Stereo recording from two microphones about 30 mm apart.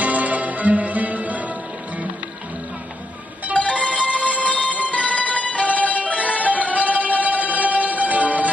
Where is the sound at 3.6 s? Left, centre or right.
Left.